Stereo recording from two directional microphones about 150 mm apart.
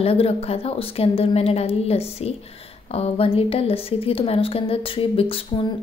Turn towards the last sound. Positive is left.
turn(degrees=35)  # may be behind; listen again after turning